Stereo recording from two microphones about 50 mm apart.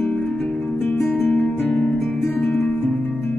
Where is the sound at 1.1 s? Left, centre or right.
Left.